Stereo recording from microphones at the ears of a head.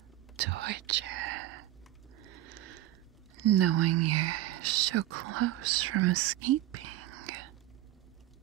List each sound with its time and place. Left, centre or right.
0.4 s whispering: right
2.1 s a sound: right
3.3 s speech: right